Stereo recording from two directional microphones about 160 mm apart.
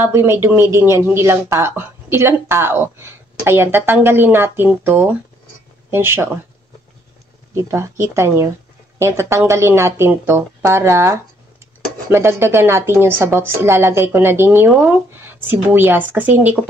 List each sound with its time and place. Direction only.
0.0 s speech: 15° right (ahead or behind)
7.6 s speech: 15° right (ahead or behind)